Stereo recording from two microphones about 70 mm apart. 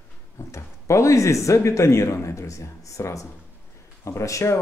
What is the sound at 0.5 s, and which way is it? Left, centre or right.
Speech, left.